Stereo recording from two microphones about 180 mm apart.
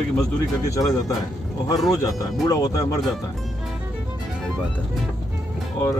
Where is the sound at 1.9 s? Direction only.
20° left (ahead or behind).